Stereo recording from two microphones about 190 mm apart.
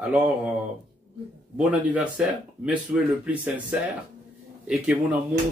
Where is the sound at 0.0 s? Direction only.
5° right (ahead or behind).